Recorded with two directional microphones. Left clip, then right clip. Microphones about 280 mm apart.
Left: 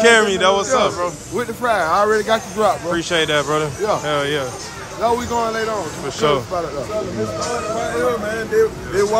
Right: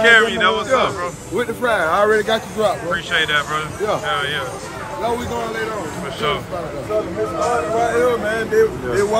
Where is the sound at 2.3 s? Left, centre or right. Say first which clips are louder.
Left 2 dB; centre.